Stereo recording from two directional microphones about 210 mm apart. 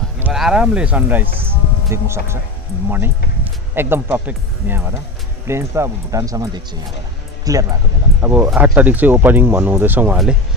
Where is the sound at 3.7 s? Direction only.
10° right (ahead or behind).